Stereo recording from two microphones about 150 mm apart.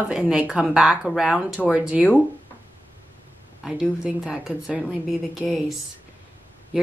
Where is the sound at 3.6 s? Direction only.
5° right (ahead or behind).